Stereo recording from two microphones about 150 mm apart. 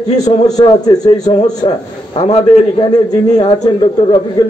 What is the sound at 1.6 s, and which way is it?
A man's voice, 40° left (ahead or behind).